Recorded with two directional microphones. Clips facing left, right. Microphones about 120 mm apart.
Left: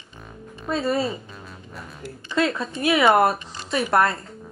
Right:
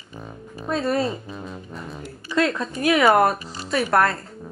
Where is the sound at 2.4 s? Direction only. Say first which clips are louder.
Right 1 dB; centre (ahead or behind).